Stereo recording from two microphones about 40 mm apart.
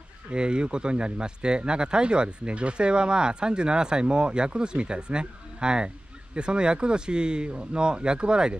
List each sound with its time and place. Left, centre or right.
0.3 s speech: right